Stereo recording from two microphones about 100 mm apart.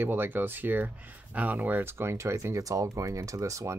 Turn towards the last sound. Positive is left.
turn(degrees=-30)  # may be behind; listen again after turning